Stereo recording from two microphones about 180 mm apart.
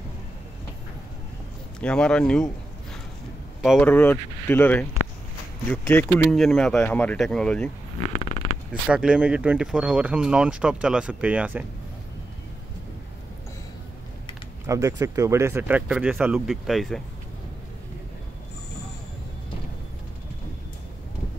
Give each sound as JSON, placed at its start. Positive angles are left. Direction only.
{"t": 1.8, "sound": "speech", "side_deg": 5}
{"t": 3.8, "sound": "speech", "side_deg": 10}
{"t": 8.0, "sound": "creak", "side_deg": 35}
{"t": 8.8, "sound": "speech", "side_deg": -5}
{"t": 14.7, "sound": "speech", "side_deg": -15}